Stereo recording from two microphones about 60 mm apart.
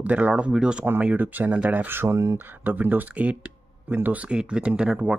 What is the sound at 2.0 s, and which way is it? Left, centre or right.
Speech, right.